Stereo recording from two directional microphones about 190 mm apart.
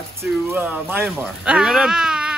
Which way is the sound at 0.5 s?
10° right (ahead or behind).